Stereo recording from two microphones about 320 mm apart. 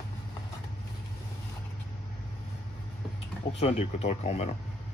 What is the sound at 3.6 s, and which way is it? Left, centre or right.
Speech, centre.